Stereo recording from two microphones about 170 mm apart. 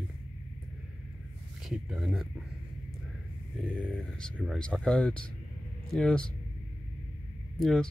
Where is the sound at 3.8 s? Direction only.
5° left (ahead or behind).